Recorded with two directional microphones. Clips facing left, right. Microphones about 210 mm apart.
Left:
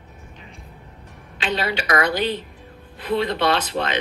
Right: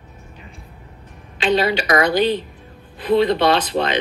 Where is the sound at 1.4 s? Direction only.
15° right (ahead or behind).